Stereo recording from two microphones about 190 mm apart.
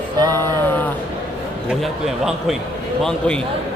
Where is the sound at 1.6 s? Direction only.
Centre (ahead or behind).